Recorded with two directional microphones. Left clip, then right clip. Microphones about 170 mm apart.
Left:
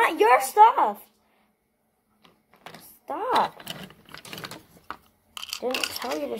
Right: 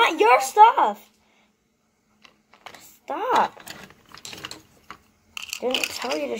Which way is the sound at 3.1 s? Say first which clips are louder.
Right 3 dB; 5° right (ahead or behind).